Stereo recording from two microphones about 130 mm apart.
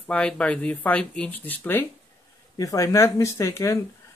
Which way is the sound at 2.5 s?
25° left (ahead or behind).